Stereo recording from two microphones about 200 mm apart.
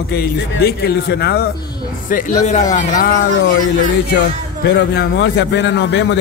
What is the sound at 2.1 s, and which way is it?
Speech, 40° left (ahead or behind).